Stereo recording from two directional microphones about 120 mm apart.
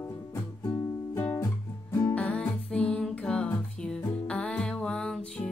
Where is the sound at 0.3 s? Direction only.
25° left (ahead or behind).